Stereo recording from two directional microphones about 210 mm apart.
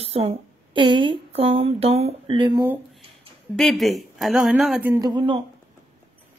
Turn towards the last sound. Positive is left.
turn(degrees=-20)  # may be behind; listen again after turning